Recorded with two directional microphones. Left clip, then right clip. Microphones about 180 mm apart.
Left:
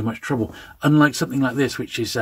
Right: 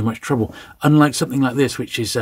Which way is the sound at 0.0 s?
40° right (ahead or behind).